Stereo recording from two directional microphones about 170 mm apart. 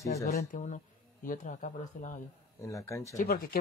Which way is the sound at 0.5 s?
45° left (ahead or behind).